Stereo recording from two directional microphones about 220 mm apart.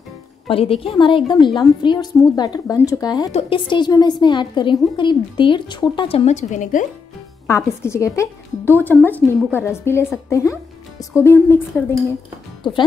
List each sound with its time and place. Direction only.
0.5 s a woman's voice: 25° left (ahead or behind)
7.4 s a woman's voice: 15° left (ahead or behind)